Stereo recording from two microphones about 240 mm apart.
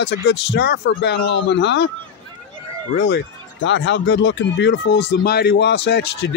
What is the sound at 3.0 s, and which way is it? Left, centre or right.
Speech, left.